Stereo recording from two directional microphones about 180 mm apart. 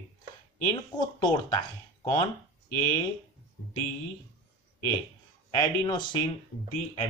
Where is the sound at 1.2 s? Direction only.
25° left (ahead or behind).